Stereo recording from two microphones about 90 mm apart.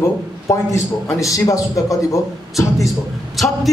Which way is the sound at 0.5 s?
35° left (ahead or behind).